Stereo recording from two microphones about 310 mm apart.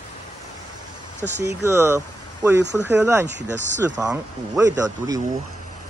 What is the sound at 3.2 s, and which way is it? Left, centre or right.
Speech, right.